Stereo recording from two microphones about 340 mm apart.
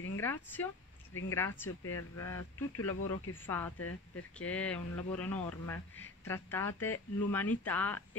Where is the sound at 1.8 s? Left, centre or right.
Left.